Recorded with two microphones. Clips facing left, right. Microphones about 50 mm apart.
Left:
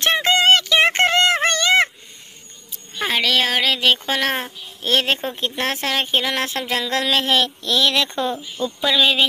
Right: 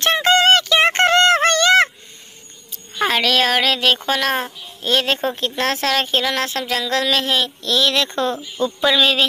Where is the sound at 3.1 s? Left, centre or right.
Centre; by 7.2 s left.